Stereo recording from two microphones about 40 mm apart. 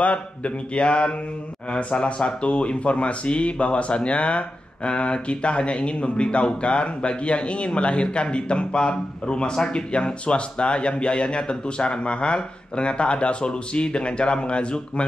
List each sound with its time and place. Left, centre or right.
0.0 s speech: left